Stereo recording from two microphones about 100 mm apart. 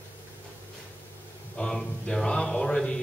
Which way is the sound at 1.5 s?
5° left (ahead or behind).